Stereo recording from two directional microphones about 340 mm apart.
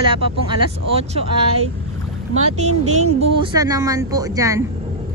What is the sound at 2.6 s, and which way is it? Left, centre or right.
A man's voice, centre.